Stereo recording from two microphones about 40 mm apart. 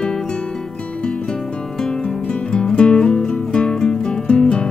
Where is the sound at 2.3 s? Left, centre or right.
Left.